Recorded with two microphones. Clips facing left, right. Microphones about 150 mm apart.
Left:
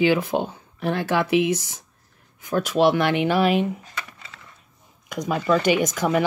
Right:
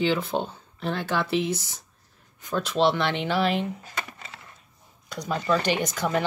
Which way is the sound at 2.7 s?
10° left (ahead or behind).